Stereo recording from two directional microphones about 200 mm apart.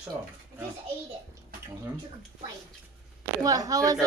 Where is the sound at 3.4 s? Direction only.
20° right (ahead or behind).